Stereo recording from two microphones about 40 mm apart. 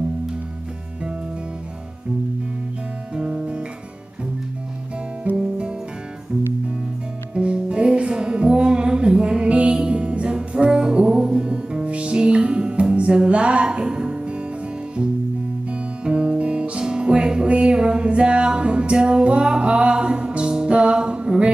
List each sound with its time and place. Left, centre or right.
3.2 s guitar: right
5.3 s music: right
7.3 s music: right
16.0 s music: right